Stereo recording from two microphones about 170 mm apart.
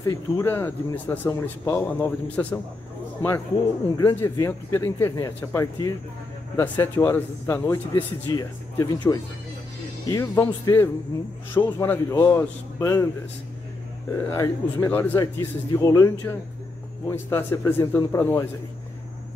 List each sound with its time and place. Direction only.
0.0 s a man's voice: 15° left (ahead or behind)
14.1 s a man's voice: 15° left (ahead or behind)